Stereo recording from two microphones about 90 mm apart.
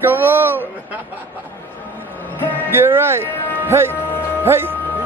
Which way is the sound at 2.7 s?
25° right (ahead or behind).